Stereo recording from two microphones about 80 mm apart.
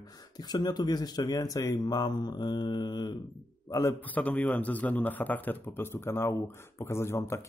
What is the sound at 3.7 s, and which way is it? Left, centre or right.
Speech, left.